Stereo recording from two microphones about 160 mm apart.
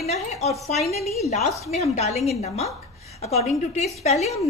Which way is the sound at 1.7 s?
40° left (ahead or behind).